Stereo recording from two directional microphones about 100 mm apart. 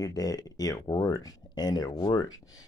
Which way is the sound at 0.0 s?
40° left (ahead or behind).